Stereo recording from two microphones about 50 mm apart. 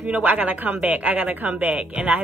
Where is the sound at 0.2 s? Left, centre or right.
Right.